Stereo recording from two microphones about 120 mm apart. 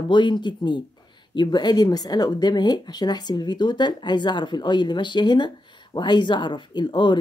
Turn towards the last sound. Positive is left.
turn(degrees=40)  # may be behind; listen again after turning